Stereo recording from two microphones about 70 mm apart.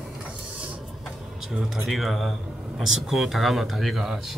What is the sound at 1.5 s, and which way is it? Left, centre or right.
Speech, centre.